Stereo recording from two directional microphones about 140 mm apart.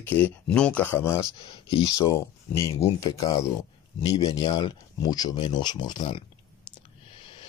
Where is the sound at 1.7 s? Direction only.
30° left (ahead or behind).